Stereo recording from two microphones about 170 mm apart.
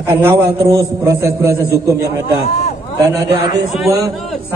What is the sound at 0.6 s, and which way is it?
Speech, 15° right (ahead or behind).